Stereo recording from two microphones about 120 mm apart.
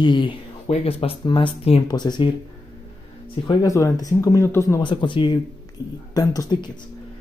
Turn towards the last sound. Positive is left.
turn(degrees=35)  # may be behind; listen again after turning